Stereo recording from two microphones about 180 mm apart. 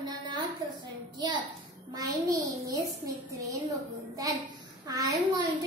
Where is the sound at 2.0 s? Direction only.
20° right (ahead or behind).